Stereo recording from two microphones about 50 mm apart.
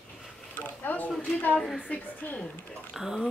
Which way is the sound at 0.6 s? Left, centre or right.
Left.